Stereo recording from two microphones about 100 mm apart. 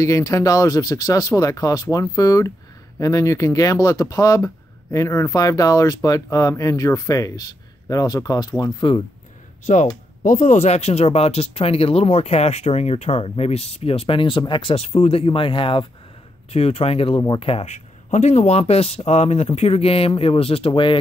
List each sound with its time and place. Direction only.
0.0 s speech: 30° left (ahead or behind)
8.7 s speech: 55° left (ahead or behind)
10.6 s speech: 90° left; by 15.9 s 60° left (ahead or behind)
16.5 s speech: 80° left
18.4 s speech: 90° left; by 21.0 s 60° left (ahead or behind)